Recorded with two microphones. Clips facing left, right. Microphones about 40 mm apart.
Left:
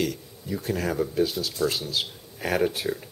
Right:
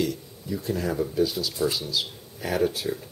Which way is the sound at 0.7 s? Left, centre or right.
Left.